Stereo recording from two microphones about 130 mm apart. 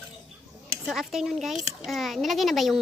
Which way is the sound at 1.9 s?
Centre (ahead or behind).